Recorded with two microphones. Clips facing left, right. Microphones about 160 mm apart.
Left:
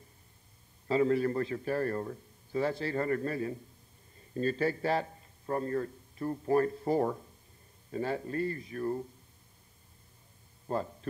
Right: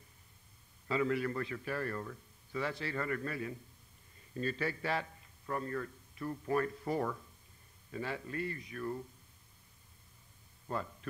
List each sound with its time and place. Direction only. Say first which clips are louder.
0.8 s a man's voice: left 6 dB; 35° left (ahead or behind)
10.7 s a man's voice: left 5 dB; 35° left (ahead or behind)